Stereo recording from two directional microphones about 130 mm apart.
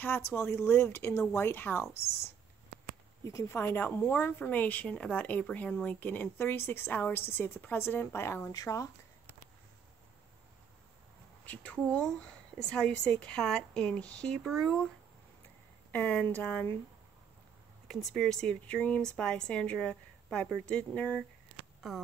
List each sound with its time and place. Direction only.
0.3 s a woman's voice: 20° left (ahead or behind)
3.3 s a woman's voice: 20° left (ahead or behind)
11.4 s a woman's voice: 10° left (ahead or behind)
15.9 s a woman's voice: 10° left (ahead or behind)
17.8 s a woman's voice: 5° left (ahead or behind)